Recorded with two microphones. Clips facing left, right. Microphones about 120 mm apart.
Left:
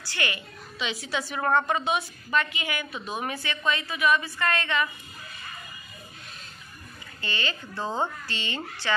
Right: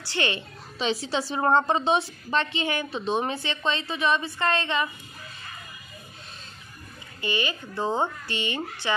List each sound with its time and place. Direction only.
0.1 s a woman's voice: 25° right (ahead or behind)
7.2 s speech: 15° right (ahead or behind)